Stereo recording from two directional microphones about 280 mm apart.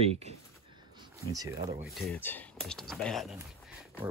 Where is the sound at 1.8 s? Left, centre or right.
Centre.